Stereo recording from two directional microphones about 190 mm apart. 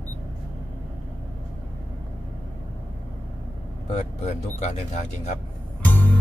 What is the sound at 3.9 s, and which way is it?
Speech, 35° left (ahead or behind).